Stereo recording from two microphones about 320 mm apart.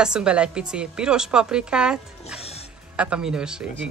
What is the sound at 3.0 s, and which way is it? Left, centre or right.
Speech, centre.